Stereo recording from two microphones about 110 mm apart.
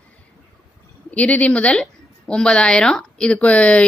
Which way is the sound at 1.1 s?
10° left (ahead or behind).